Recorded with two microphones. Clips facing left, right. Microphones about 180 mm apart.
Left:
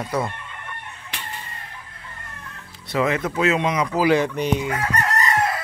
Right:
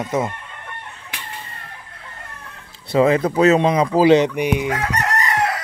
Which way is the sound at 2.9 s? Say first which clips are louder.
Right 6 dB; 30° right (ahead or behind).